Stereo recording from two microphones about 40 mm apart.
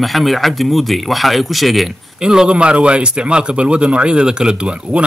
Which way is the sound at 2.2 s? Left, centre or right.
Centre.